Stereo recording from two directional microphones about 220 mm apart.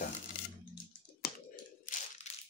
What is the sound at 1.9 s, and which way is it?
Crushing, 40° left (ahead or behind).